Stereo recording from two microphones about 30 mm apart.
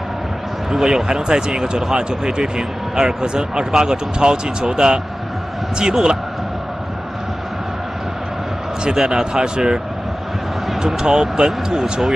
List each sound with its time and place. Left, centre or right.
0.7 s speech: centre
1.0 s a man's voice: right
9.0 s a man's voice: right
10.9 s a man's voice: centre